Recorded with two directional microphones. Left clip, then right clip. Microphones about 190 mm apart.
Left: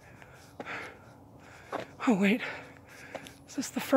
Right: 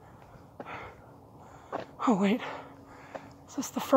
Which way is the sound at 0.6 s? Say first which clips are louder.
Left 2 dB; 20° left (ahead or behind).